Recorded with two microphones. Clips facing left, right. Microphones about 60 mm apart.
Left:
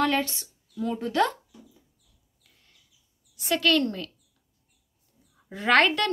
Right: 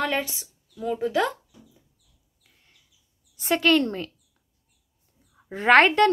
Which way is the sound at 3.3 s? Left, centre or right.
Right.